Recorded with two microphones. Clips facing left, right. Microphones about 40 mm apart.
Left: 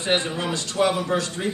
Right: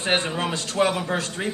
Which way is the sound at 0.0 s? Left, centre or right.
Right.